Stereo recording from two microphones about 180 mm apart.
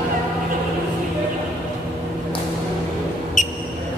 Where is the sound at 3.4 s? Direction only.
45° left (ahead or behind).